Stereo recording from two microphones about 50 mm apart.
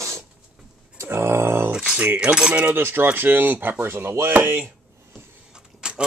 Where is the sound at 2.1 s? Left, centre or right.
Centre.